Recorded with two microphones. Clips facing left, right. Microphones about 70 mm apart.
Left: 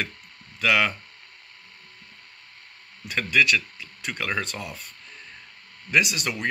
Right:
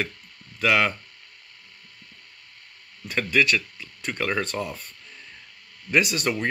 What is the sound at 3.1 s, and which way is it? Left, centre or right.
Speech, right.